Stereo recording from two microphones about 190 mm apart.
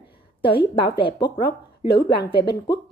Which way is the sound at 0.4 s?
25° left (ahead or behind).